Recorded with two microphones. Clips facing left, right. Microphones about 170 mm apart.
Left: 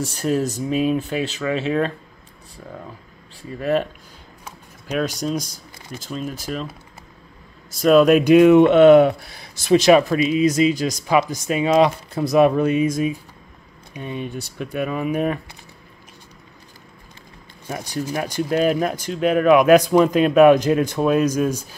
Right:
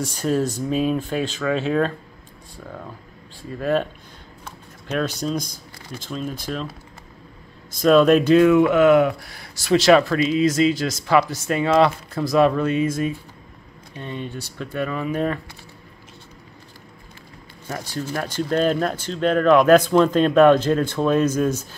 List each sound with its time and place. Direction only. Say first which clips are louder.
0.0 s speech: even; 5° left (ahead or behind)
3.4 s speech: left 1 dB; 5° left (ahead or behind)
4.5 s a sound: even; 10° left (ahead or behind)
5.9 s speech: even; 5° left (ahead or behind)
7.7 s speech: left 1 dB; 10° left (ahead or behind)
17.6 s speech: left 2 dB; 15° left (ahead or behind)